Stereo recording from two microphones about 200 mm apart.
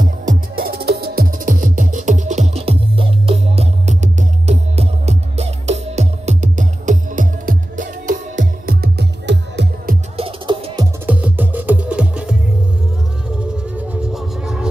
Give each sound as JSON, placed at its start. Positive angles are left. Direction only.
{"t": 0.0, "sound": "music", "side_deg": -45}
{"t": 10.1, "sound": "music", "side_deg": -25}
{"t": 11.1, "sound": "music", "side_deg": -10}
{"t": 13.4, "sound": "music", "side_deg": -5}